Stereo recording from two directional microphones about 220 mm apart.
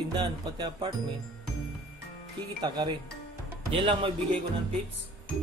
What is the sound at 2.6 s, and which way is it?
Speech, 20° right (ahead or behind).